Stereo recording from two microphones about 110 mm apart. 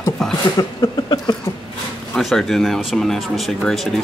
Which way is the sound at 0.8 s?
40° left (ahead or behind).